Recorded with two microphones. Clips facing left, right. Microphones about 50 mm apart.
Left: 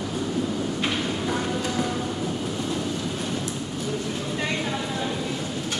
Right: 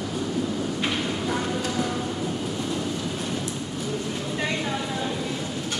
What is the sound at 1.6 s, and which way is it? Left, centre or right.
Train, left.